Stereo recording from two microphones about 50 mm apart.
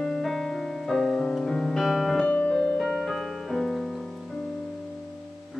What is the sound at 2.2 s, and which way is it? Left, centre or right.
Music, left.